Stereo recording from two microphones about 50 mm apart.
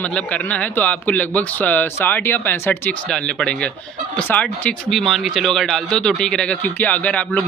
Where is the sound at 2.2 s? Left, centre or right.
Left.